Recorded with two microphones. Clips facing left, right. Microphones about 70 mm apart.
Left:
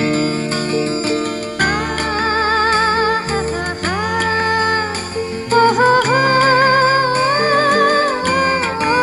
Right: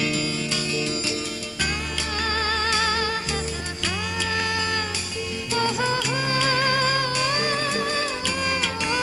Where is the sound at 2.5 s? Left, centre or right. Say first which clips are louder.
Left 10 dB; left.